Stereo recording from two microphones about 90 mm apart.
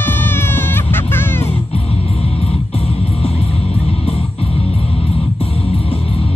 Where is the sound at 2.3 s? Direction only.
90° left.